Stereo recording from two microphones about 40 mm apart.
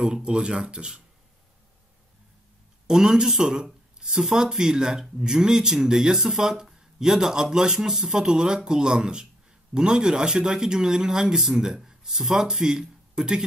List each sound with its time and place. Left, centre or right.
0.0 s speech: right
2.9 s speech: centre